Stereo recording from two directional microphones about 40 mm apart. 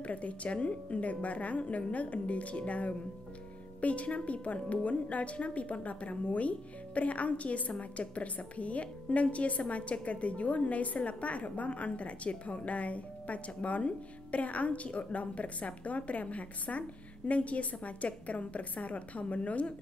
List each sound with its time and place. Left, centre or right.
0.0 s a woman's voice: left